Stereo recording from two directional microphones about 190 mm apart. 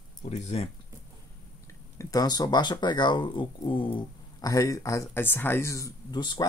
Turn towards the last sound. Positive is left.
turn(degrees=25)  # may be behind; listen again after turning